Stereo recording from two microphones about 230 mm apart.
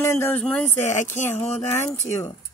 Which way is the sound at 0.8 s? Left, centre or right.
Left.